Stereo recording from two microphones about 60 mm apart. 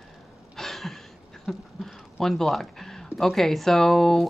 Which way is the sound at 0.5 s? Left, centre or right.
Centre.